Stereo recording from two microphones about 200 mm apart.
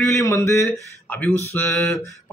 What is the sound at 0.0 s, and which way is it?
Speech, 15° left (ahead or behind).